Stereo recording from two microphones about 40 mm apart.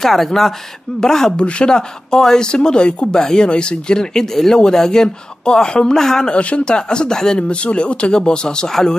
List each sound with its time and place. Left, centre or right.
0.0 s speech: centre
6.3 s speech: left